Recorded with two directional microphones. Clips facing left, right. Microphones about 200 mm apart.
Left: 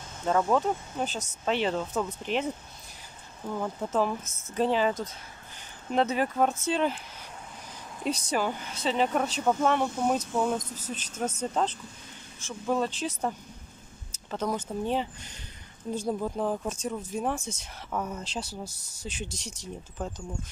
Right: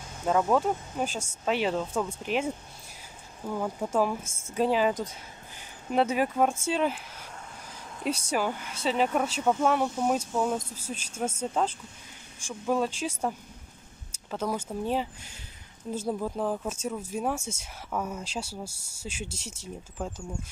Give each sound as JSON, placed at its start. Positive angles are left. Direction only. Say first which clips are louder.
{"t": 0.2, "sound": "speech", "louder": "right 1 dB", "side_deg": -5}
{"t": 4.2, "sound": "a woman's voice", "louder": "right 2 dB", "side_deg": -30}
{"t": 4.6, "sound": "speech", "louder": "right 1 dB", "side_deg": -5}
{"t": 8.0, "sound": "speech", "louder": "even", "side_deg": -10}
{"t": 14.3, "sound": "speech", "louder": "even", "side_deg": -5}